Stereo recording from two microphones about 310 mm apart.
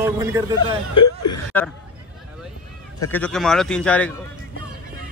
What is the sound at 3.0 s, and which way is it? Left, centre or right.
Speech, centre.